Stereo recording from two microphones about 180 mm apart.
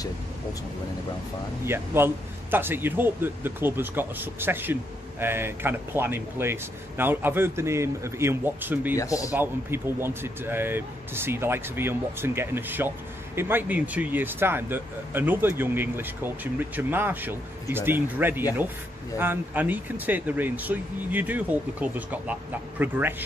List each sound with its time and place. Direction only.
1.7 s speech: 10° right (ahead or behind)
8.9 s speech: 20° left (ahead or behind)
9.3 s speech: 10° right (ahead or behind)